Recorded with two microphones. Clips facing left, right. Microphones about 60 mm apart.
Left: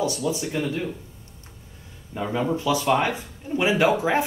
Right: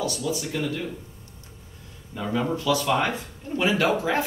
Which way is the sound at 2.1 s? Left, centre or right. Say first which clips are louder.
Left 1 dB; left.